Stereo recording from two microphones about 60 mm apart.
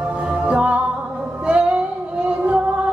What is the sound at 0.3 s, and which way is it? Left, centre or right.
Music, right.